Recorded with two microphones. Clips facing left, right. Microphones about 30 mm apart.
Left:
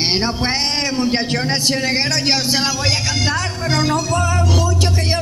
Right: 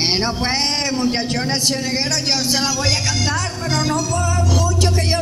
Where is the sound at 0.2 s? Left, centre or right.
Centre.